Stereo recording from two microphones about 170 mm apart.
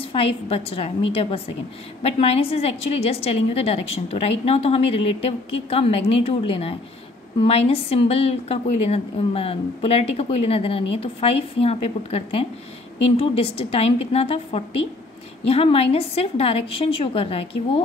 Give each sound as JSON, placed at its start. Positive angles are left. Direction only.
{"t": 0.0, "sound": "a woman's voice", "side_deg": 35}